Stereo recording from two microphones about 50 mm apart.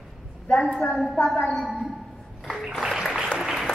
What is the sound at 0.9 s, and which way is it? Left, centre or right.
A woman's voice, centre.